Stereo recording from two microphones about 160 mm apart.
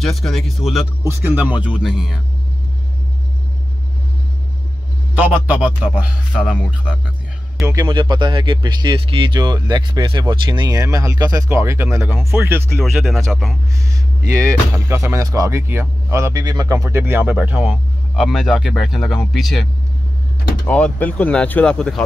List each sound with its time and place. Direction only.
0.0 s speech: centre (ahead or behind)
1.0 s speech: 10° right (ahead or behind)
5.1 s speech: 10° right (ahead or behind)
7.6 s speech: 20° right (ahead or behind)
12.8 s speech: centre (ahead or behind)
14.3 s speech: 20° right (ahead or behind); by 22.0 s 5° left (ahead or behind)